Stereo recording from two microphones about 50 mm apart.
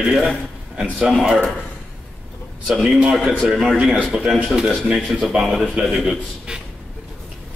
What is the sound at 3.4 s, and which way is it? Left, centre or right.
Speech, centre.